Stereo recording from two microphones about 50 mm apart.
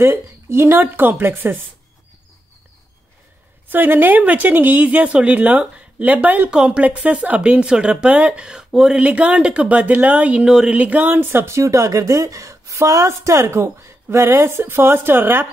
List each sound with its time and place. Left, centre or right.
0.0 s a woman's voice: right
0.7 s speech: right
3.6 s speech: right
6.5 s speech: centre
8.9 s speech: right
10.4 s speech: centre
10.7 s speech: right
11.5 s a woman's voice: right
14.4 s speech: right